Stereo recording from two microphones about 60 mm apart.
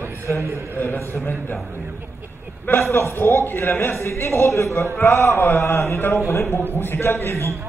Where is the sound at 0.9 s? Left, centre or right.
Left.